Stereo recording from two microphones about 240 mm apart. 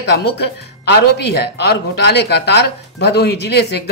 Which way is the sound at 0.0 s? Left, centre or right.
Left.